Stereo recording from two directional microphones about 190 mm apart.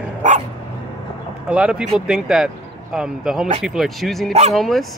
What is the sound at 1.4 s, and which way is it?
Speech, 5° right (ahead or behind).